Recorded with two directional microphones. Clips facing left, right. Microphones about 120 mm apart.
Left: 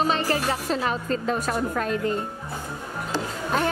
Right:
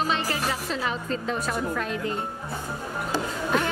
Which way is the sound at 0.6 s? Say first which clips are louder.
Left 3 dB; 45° left (ahead or behind).